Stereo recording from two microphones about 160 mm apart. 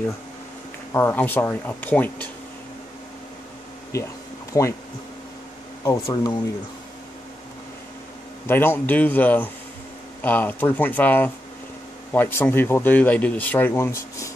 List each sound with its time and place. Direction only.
0.9 s speech: 10° left (ahead or behind)
4.5 s speech: 20° left (ahead or behind)
5.9 s speech: 20° left (ahead or behind)
8.5 s speech: 15° left (ahead or behind)